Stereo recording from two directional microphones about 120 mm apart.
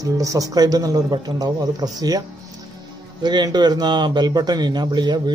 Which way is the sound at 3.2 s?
35° right (ahead or behind).